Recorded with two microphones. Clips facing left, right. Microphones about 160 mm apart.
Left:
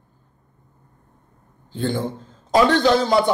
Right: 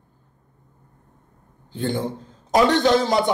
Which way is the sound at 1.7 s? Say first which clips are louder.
Left 1 dB; 15° right (ahead or behind).